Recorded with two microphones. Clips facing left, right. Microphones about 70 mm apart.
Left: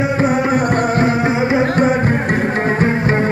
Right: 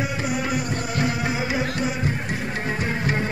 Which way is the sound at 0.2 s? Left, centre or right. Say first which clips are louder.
Left 10 dB; left.